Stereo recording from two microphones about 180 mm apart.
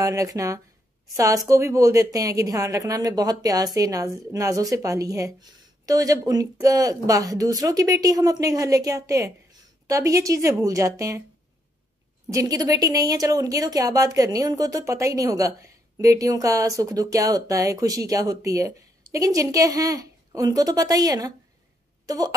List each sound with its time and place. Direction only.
0.0 s a woman's voice: 20° right (ahead or behind)
12.3 s speech: 20° right (ahead or behind)